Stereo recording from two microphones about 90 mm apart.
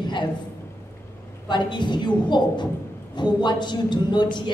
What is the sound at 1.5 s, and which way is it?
A woman's voice, 55° left (ahead or behind).